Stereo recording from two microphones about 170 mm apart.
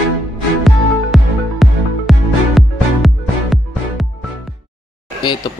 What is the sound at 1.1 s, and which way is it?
Music, centre (ahead or behind).